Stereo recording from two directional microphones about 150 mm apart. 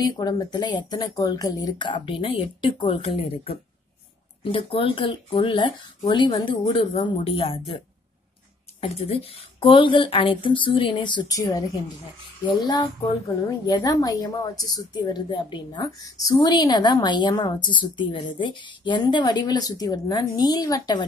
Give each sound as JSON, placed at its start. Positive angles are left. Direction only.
{"t": 0.0, "sound": "a woman's voice", "side_deg": 25}
{"t": 8.8, "sound": "a woman's voice", "side_deg": 40}